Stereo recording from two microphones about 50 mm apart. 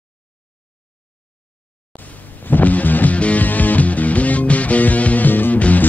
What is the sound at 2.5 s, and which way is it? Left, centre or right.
Music, left.